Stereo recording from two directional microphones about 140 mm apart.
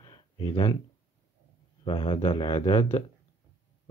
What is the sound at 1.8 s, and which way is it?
Speech, 35° left (ahead or behind).